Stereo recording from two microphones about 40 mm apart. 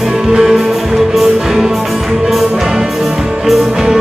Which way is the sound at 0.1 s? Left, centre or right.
Centre.